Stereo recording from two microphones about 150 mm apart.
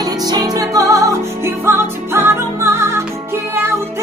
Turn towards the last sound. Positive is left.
turn(degrees=-15)  # may be behind; listen again after turning